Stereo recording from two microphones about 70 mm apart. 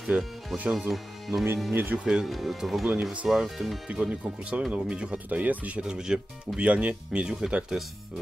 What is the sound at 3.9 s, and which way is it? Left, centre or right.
Speech, centre.